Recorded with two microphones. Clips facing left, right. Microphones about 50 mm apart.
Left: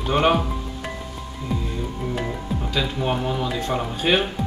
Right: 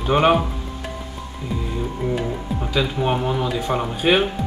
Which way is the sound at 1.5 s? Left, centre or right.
Centre.